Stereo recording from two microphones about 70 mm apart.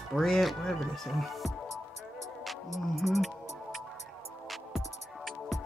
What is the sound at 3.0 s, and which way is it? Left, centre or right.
Speech, centre.